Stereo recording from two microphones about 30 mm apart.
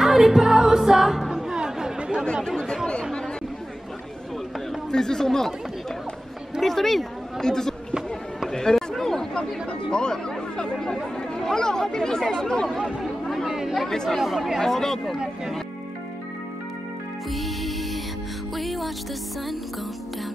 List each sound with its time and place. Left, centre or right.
0.0 s music: centre
1.3 s music: right
2.0 s chatter: right
4.9 s speech: centre
6.6 s speech: centre
7.3 s speech: centre
11.0 s chatter: centre
11.5 s speech: left
13.5 s chatter: centre
13.8 s speech: centre
14.1 s speech: centre
14.6 s speech: centre
17.3 s music: centre